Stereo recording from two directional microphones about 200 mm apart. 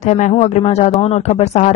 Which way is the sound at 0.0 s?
35° left (ahead or behind).